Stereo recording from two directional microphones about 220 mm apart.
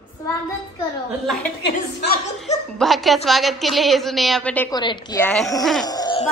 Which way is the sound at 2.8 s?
Centre (ahead or behind).